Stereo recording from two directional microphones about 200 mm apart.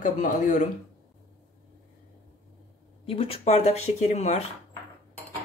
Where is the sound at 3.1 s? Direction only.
30° left (ahead or behind).